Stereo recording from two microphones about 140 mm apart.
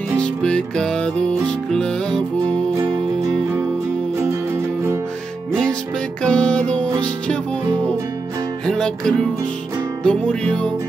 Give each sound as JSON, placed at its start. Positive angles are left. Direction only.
{"t": 0.2, "sound": "music", "side_deg": 5}
{"t": 4.2, "sound": "music", "side_deg": -20}
{"t": 6.2, "sound": "music", "side_deg": 5}
{"t": 8.6, "sound": "music", "side_deg": 5}